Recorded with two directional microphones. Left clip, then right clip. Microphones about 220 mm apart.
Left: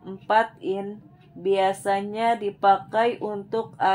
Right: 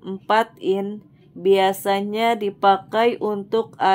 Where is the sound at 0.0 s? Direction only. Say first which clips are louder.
Right 2 dB; 40° right (ahead or behind).